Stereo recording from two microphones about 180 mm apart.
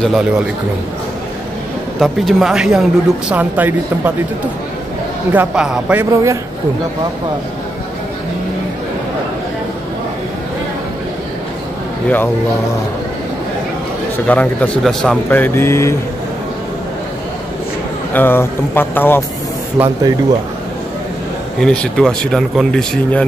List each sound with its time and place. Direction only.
0.0 s speech: centre (ahead or behind)
2.0 s speech: centre (ahead or behind)
5.3 s speech: 5° right (ahead or behind)
14.2 s speech: 10° left (ahead or behind)
18.1 s speech: 10° left (ahead or behind)
20.0 s speech: 20° right (ahead or behind)
21.5 s speech: 5° left (ahead or behind)